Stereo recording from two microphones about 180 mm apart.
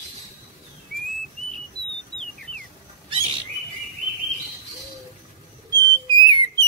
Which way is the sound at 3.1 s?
30° right (ahead or behind).